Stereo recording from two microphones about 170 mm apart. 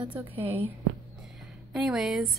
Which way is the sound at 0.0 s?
10° right (ahead or behind).